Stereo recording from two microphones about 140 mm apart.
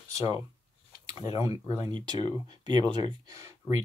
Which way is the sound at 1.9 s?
30° right (ahead or behind).